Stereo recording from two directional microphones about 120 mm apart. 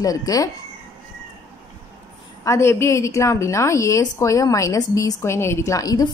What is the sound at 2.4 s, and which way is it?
A woman's voice, 25° left (ahead or behind).